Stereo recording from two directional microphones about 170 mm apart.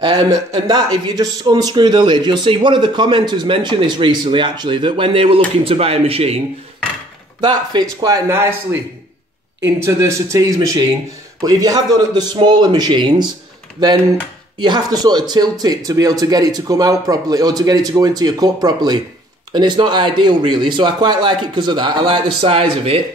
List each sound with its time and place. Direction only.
0.0 s speech: 25° right (ahead or behind)
7.3 s speech: 25° right (ahead or behind)
9.8 s speech: 15° right (ahead or behind)
14.6 s speech: 25° right (ahead or behind)